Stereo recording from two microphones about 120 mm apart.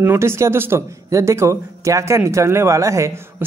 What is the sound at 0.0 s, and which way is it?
A man's voice, 20° right (ahead or behind).